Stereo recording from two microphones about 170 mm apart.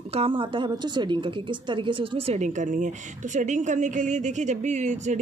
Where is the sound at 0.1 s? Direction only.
35° right (ahead or behind).